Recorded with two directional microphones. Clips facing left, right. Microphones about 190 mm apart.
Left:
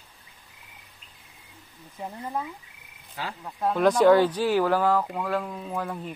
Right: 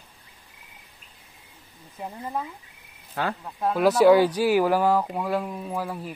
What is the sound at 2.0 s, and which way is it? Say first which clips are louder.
Speech: right 1 dB; 5° right (ahead or behind).